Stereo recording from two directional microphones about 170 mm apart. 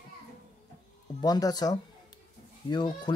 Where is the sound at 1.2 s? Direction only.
20° left (ahead or behind).